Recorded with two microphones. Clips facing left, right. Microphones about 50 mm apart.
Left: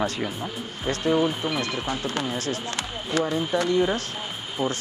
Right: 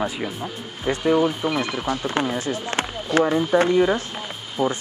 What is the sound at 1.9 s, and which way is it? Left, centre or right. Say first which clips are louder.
Speech: right 4 dB; right.